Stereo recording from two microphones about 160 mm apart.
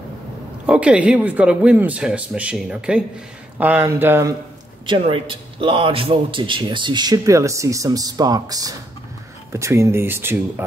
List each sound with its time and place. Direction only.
0.7 s speech: 10° right (ahead or behind)
4.8 s a man's voice: 35° right (ahead or behind); by 10.4 s 15° right (ahead or behind)